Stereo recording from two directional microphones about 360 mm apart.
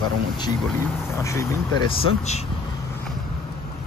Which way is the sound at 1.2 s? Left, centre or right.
Centre.